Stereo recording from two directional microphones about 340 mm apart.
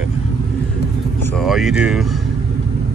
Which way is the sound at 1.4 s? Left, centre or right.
Centre.